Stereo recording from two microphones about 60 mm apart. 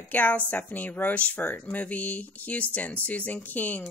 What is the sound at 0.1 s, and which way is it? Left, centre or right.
Speech, left.